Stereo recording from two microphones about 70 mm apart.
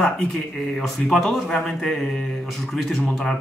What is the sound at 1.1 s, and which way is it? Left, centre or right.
Speech, centre.